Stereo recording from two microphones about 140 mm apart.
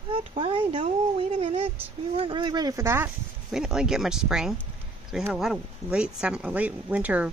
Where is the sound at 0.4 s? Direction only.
40° right (ahead or behind); by 3.1 s 20° right (ahead or behind).